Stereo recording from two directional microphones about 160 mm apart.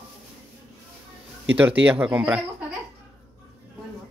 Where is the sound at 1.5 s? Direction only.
10° right (ahead or behind).